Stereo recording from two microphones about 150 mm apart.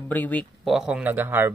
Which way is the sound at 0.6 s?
Centre (ahead or behind).